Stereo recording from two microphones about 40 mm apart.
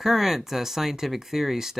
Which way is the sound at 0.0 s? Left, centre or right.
Centre.